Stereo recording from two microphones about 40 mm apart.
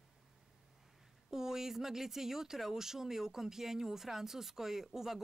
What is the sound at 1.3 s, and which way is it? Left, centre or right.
Speech, centre.